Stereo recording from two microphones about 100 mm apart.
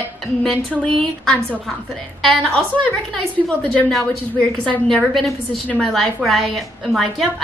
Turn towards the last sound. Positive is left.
turn(degrees=0)  # may be behind; listen again after turning